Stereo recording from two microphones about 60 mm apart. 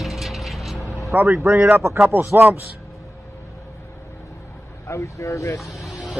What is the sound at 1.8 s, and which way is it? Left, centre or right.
Speech, right.